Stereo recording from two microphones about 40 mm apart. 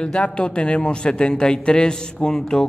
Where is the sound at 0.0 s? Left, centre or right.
Left.